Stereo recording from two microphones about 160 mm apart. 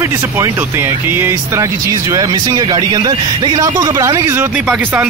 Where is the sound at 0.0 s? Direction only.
15° right (ahead or behind).